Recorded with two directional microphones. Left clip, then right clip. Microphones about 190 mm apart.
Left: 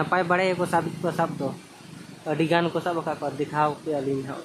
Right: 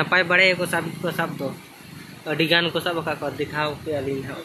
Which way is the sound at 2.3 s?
10° left (ahead or behind).